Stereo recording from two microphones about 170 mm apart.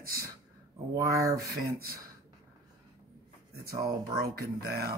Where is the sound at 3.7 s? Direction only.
20° right (ahead or behind).